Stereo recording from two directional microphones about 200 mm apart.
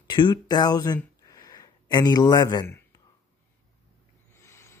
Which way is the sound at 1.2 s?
20° left (ahead or behind).